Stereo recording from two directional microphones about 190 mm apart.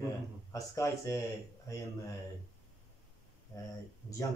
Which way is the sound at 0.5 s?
15° left (ahead or behind).